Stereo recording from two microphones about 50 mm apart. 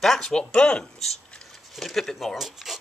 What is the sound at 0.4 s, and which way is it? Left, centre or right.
Speech, centre.